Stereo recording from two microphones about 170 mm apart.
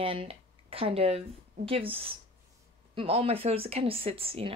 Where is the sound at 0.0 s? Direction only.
30° right (ahead or behind).